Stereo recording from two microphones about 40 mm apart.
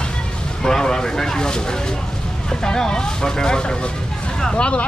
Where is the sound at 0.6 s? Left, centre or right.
Centre.